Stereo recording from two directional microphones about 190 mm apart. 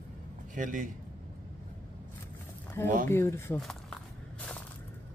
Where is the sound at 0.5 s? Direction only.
40° right (ahead or behind).